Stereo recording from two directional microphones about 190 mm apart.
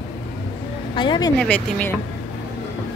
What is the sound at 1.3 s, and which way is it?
Speech, 5° left (ahead or behind).